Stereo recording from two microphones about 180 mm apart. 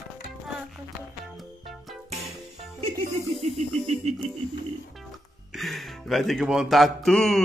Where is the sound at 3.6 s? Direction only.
35° right (ahead or behind).